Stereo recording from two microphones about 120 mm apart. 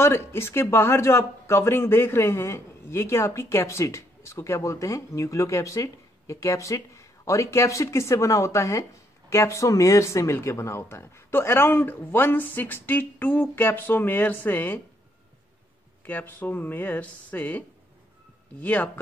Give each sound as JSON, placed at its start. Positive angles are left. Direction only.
{"t": 0.0, "sound": "speech", "side_deg": 20}
{"t": 16.1, "sound": "speech", "side_deg": 15}